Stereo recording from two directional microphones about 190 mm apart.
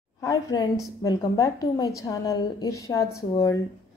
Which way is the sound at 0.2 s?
15° left (ahead or behind).